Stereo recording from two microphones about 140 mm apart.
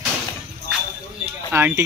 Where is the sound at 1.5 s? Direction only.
20° right (ahead or behind).